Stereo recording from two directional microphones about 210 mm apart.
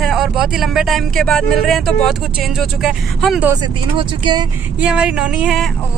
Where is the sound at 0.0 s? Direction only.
Centre (ahead or behind).